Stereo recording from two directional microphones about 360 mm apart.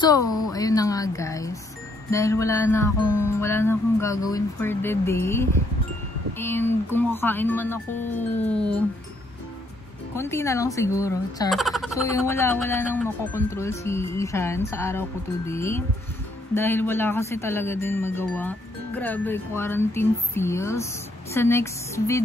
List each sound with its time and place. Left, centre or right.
0.4 s speech: centre
10.1 s speech: centre